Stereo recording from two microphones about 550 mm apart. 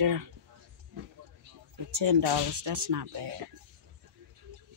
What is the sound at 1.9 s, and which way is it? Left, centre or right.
Speech, right.